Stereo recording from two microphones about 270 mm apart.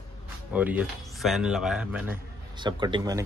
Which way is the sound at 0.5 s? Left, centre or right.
Centre.